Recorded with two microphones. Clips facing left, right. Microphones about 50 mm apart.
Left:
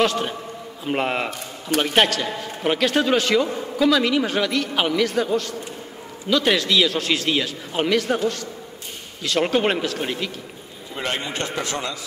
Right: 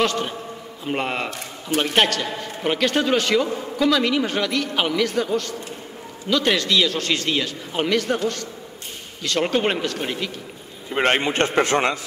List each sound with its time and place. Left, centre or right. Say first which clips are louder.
0.0 s a man's voice: left 1 dB; centre
9.2 s a man's voice: left 1 dB; centre
11.0 s a man's voice: right 7 dB; right